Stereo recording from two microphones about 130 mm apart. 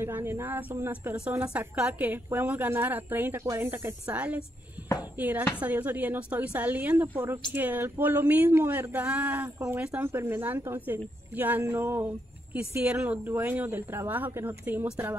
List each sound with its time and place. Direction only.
0.0 s a woman's voice: 15° right (ahead or behind)